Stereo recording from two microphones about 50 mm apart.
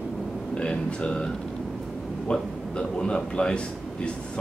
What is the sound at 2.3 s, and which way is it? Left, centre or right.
Speech, centre.